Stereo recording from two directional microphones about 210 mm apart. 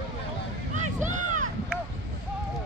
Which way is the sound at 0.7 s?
35° right (ahead or behind).